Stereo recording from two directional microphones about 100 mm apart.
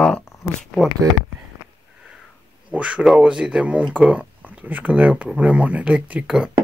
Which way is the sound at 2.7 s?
10° right (ahead or behind).